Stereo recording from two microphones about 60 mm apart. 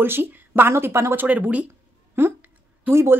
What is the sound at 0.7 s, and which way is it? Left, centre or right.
Speech, right.